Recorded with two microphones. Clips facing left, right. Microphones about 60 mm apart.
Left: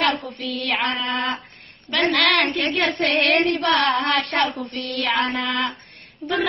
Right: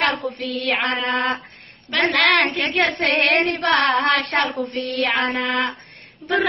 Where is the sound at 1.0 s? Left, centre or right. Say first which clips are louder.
Right 3 dB; right.